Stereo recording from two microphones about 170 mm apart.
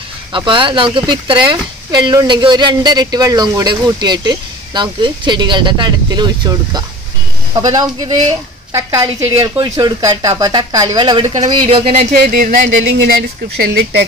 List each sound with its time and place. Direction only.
0.3 s speech: 30° right (ahead or behind); by 12.5 s 50° right (ahead or behind)
12.6 s speech: 75° right (ahead or behind)